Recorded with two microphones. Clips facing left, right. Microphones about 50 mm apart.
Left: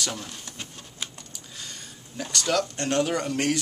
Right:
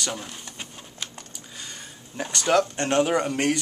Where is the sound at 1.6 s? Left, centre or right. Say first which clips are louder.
Right 1 dB; centre.